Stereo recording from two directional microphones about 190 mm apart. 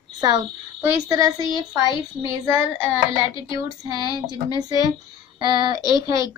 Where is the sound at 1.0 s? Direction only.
15° right (ahead or behind).